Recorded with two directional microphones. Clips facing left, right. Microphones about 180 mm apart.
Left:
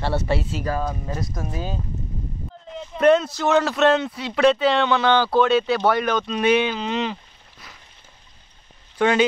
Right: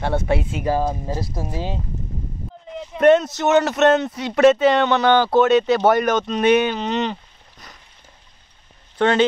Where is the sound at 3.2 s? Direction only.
20° right (ahead or behind).